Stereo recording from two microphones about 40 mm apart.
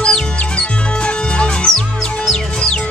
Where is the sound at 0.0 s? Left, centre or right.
Left.